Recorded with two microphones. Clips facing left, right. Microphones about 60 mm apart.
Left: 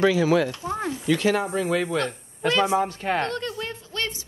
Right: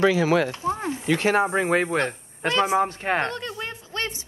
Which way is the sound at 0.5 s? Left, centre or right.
Right.